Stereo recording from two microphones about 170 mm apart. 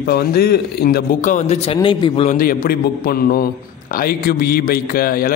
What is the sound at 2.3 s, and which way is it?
A man's voice, 55° left (ahead or behind).